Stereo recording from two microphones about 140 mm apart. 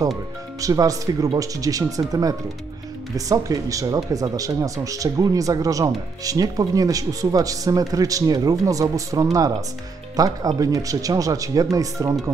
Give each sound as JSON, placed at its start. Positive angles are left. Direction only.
{"t": 0.6, "sound": "speech", "side_deg": -25}